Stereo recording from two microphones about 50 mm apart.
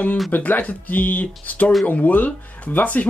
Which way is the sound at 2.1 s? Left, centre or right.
Left.